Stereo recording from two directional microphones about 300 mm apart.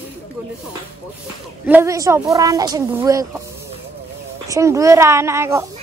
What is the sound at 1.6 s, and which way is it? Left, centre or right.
Speech, centre.